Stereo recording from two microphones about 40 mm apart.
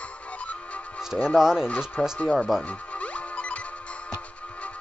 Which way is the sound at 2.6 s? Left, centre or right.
Left.